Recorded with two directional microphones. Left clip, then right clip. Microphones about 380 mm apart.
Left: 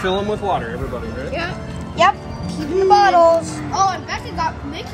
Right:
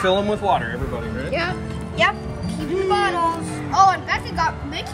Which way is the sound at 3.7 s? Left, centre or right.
Right.